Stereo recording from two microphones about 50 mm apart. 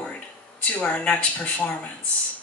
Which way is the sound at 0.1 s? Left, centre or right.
Left.